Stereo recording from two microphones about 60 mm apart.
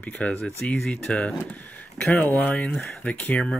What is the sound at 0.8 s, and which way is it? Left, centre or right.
Speech, centre.